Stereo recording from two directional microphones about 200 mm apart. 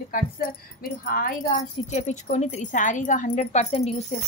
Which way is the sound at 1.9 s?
35° left (ahead or behind).